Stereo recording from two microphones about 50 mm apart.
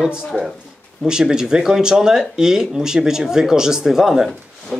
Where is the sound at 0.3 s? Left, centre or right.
Centre.